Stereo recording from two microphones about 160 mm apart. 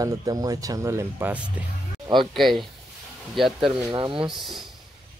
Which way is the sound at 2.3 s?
Centre (ahead or behind).